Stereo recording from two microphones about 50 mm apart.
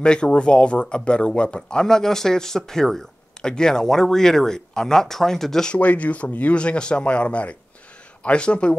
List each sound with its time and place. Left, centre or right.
0.0 s speech: centre
5.7 s speech: left